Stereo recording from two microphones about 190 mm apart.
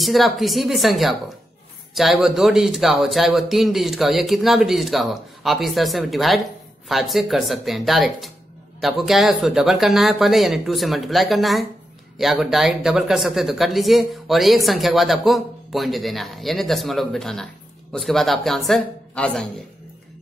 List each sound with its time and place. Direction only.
0.0 s speech: centre (ahead or behind)